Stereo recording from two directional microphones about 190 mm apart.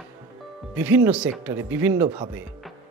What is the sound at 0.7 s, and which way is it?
Speech, 10° right (ahead or behind).